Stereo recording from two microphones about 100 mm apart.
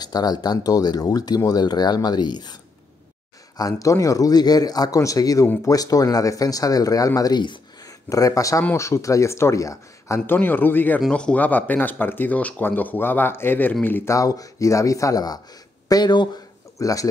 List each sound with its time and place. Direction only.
0.0 s speech: 40° left (ahead or behind)
3.5 s speech: 35° left (ahead or behind)
8.1 s speech: 35° left (ahead or behind)
14.1 s speech: 35° left (ahead or behind)
16.7 s speech: 35° left (ahead or behind)